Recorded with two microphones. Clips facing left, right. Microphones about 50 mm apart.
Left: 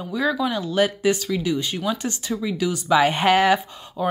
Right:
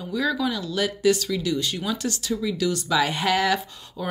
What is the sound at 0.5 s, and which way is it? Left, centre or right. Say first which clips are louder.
A woman's voice: left 5 dB; left.